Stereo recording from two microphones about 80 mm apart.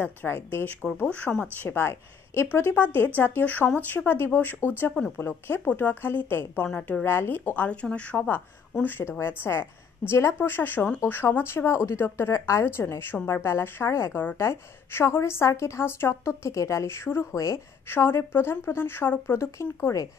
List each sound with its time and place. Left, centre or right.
0.0 s speech: left
8.8 s speech: left
17.8 s speech: left